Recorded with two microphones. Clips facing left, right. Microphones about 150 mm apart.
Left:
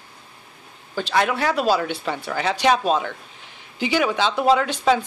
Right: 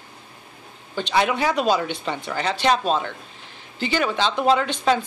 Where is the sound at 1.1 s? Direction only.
5° right (ahead or behind).